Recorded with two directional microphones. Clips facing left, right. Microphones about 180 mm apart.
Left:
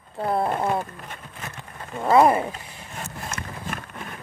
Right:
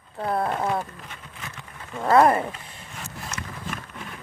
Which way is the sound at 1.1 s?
50° left (ahead or behind).